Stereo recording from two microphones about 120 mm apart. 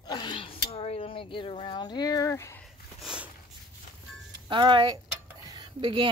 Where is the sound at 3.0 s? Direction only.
10° right (ahead or behind).